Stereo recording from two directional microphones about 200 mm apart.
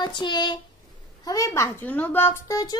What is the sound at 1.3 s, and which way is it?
A child's voice, 15° left (ahead or behind).